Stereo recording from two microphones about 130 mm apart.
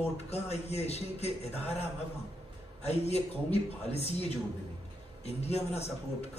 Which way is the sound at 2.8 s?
55° left (ahead or behind).